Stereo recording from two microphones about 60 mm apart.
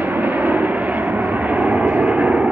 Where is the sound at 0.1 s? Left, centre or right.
Right.